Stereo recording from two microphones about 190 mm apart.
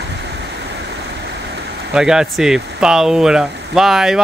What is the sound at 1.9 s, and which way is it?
Speech, 5° right (ahead or behind).